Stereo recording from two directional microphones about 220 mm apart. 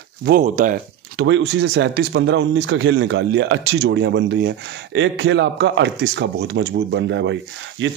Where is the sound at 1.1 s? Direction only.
55° right (ahead or behind).